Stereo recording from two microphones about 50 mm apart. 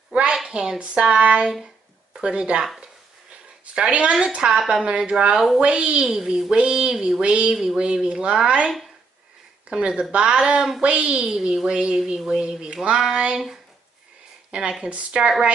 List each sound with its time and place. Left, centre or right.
0.1 s a sound: centre
0.5 s speech: centre
3.7 s a woman's voice: centre
6.1 s a woman's voice: centre
6.5 s speech: right
11.2 s speech: centre
12.2 s a woman's voice: centre
14.5 s speech: centre